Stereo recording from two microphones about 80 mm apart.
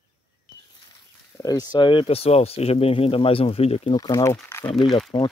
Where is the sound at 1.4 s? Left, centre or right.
Left.